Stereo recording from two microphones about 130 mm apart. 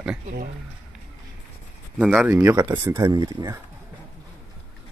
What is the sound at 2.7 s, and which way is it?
Speech, 30° right (ahead or behind).